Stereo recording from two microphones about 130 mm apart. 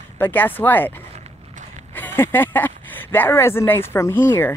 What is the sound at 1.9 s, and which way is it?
Speech, 15° left (ahead or behind).